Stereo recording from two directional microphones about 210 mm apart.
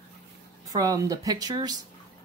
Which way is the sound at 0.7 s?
15° right (ahead or behind).